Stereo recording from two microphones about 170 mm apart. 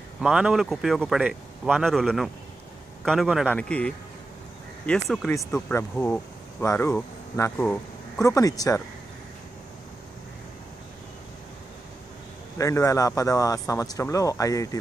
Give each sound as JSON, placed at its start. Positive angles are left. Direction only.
{"t": 0.2, "sound": "speech", "side_deg": -5}
{"t": 12.5, "sound": "speech", "side_deg": 20}